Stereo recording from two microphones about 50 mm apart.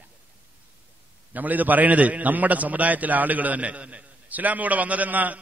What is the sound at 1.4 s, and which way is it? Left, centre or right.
A man's voice, right.